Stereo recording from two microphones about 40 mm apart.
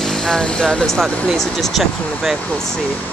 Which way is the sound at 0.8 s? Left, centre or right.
Centre.